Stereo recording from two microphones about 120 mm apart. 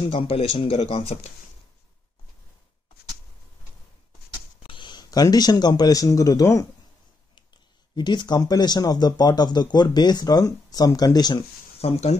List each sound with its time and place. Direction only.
0.0 s speech: 55° left (ahead or behind)
4.6 s speech: 40° left (ahead or behind)
7.9 s speech: 40° left (ahead or behind)
11.8 s speech: 65° left (ahead or behind)